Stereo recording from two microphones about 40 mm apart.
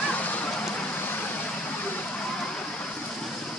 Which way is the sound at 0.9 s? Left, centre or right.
Left.